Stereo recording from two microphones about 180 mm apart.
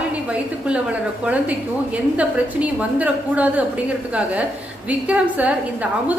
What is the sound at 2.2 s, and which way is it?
A woman's voice, 5° right (ahead or behind).